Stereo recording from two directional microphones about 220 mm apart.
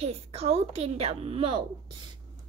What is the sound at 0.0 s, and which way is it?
A child's voice, 25° right (ahead or behind).